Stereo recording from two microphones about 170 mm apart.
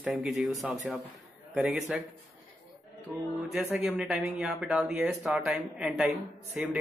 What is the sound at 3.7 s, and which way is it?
Speech, 5° right (ahead or behind).